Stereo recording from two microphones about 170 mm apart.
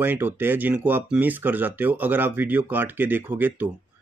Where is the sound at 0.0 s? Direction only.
10° right (ahead or behind).